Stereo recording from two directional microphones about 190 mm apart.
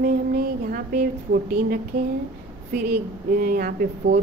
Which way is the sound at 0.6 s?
50° right (ahead or behind).